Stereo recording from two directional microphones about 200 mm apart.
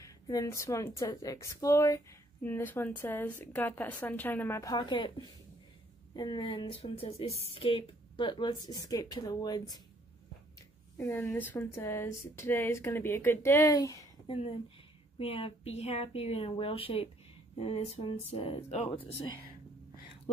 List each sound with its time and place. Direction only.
0.0 s speech: 15° left (ahead or behind)
6.1 s a woman's voice: 20° left (ahead or behind)
11.0 s a woman's voice: 15° left (ahead or behind); by 18.9 s 30° left (ahead or behind)